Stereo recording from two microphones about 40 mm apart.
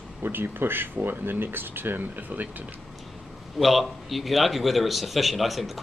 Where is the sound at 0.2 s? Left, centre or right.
Right.